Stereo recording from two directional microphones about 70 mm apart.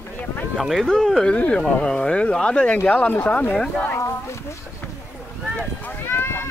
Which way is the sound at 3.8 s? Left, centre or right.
Left.